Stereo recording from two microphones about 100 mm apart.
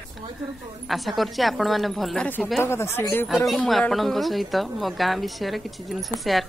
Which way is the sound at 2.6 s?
25° left (ahead or behind).